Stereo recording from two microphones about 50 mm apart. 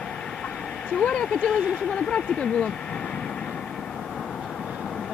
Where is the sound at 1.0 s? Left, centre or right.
Centre.